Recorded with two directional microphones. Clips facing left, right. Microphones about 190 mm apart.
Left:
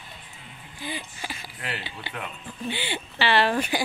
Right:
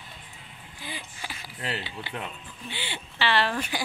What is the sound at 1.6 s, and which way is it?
Speech, 30° right (ahead or behind).